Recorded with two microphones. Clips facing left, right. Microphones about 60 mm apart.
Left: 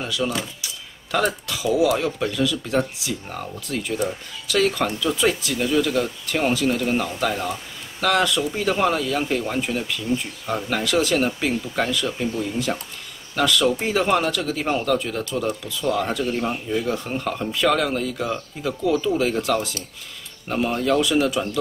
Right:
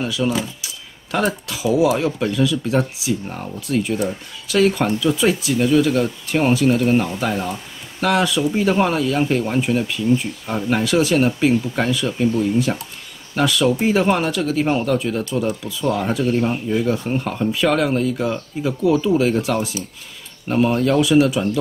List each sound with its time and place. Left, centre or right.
0.1 s speech: centre
3.6 s speech: centre
5.6 s speech: centre
13.4 s speech: centre